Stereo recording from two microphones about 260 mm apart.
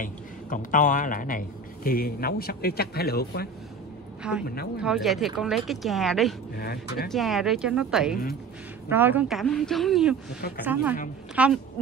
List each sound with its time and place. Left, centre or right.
0.0 s speech: left
4.2 s a woman's voice: centre
6.6 s speech: left
7.1 s speech: centre